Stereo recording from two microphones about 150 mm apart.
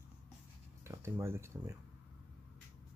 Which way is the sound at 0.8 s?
20° right (ahead or behind).